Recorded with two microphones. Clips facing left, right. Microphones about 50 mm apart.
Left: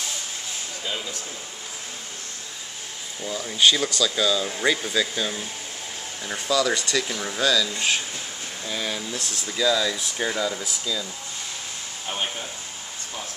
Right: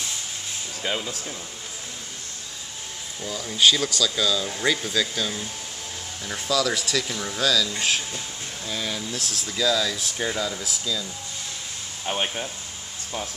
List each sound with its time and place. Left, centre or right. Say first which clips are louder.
3.2 s speech: even; centre
12.1 s speech: right 3 dB; right